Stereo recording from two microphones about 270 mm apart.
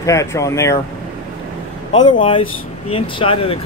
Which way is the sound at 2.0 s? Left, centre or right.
Centre.